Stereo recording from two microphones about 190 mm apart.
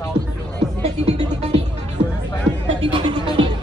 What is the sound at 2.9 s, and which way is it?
Music, 25° right (ahead or behind).